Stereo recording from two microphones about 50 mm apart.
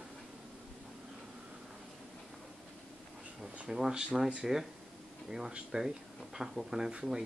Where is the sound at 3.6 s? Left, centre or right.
Centre.